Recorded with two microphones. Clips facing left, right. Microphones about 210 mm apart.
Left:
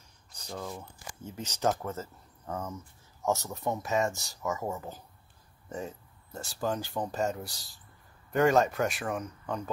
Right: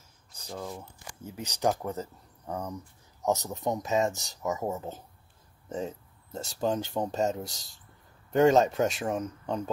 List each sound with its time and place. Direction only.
0.5 s speech: 10° right (ahead or behind)
5.7 s a sound: 20° right (ahead or behind)
6.6 s speech: 20° right (ahead or behind)